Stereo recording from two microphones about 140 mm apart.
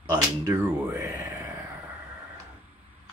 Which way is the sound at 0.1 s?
15° right (ahead or behind).